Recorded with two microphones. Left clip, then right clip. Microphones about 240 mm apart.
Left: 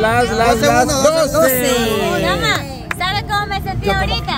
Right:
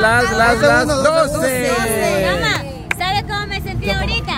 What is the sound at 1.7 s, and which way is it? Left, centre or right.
Music, left.